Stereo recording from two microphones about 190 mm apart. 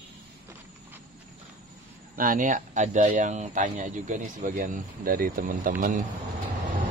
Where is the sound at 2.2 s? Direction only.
45° right (ahead or behind).